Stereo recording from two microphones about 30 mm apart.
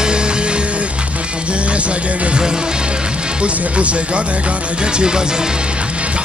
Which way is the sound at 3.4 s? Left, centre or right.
Right.